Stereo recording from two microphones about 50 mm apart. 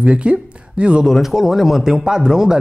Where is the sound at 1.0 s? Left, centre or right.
Centre.